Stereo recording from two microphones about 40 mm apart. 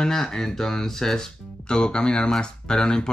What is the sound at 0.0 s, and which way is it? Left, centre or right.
Speech, centre.